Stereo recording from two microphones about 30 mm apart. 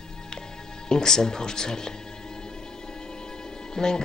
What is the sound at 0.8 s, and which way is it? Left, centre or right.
Music, left.